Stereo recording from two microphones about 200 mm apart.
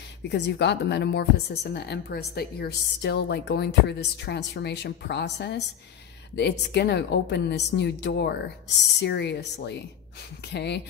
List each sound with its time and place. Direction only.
0.3 s a woman's voice: 60° left (ahead or behind)